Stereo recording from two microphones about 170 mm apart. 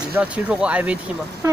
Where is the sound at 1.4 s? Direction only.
20° right (ahead or behind).